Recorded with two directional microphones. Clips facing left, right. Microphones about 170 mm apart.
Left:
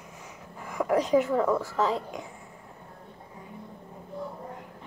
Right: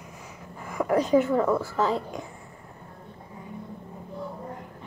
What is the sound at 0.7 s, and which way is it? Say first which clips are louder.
Speech: right 2 dB; centre (ahead or behind).